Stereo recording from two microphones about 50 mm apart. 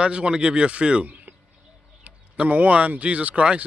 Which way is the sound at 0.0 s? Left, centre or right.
Right.